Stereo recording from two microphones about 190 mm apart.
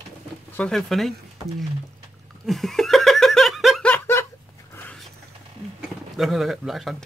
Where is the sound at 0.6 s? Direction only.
5° left (ahead or behind).